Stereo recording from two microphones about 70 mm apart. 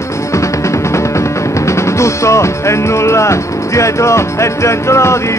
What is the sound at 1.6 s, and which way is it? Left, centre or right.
Music, left.